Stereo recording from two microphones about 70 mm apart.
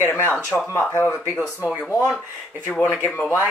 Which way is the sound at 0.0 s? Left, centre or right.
Left.